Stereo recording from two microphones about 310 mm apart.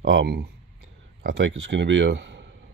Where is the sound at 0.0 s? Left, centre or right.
Right.